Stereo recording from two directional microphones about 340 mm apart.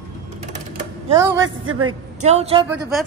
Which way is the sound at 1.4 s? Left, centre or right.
Right.